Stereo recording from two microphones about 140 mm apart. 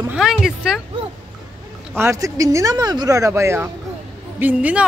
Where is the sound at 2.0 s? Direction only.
20° right (ahead or behind).